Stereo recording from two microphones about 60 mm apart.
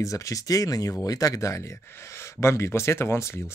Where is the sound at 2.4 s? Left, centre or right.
Left.